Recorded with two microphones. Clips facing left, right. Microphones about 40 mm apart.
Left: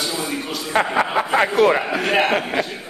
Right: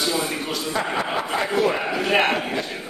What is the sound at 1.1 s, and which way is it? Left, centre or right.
Speech, centre.